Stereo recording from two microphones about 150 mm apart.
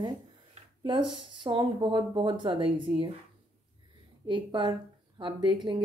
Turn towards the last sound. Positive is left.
turn(degrees=-30)  # may be behind; listen again after turning